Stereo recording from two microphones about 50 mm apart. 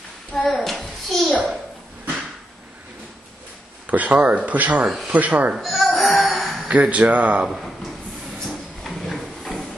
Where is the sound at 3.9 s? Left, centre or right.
Right.